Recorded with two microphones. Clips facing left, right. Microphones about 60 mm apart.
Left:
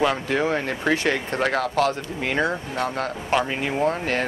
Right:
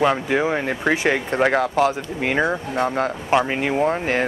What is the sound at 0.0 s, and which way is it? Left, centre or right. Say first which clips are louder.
Speech: right 3 dB; centre.